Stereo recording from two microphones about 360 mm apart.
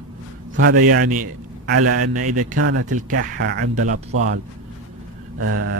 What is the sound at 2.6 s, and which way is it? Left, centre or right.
Speech, right.